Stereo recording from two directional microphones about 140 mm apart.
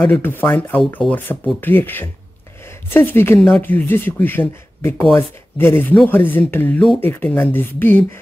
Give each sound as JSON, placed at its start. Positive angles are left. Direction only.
{"t": 0.0, "sound": "speech", "side_deg": 15}